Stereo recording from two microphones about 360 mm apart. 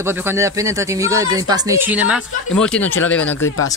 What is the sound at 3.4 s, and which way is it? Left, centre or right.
Speech, left.